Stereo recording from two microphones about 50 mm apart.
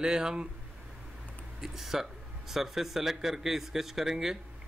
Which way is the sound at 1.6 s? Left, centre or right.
Centre.